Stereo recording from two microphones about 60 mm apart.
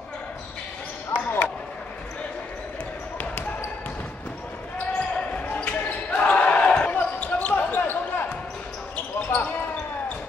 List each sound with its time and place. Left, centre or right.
1.1 s basketball bounce: left
5.1 s basketball bounce: centre